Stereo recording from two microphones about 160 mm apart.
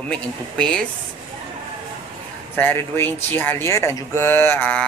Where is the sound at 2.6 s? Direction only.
15° left (ahead or behind).